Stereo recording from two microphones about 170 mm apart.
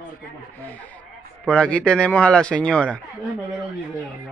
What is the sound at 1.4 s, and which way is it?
Speech, 5° left (ahead or behind).